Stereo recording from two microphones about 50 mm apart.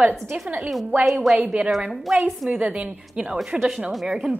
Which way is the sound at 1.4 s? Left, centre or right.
Right.